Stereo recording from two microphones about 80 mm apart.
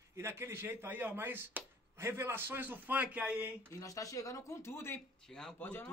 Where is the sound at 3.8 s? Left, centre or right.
Left.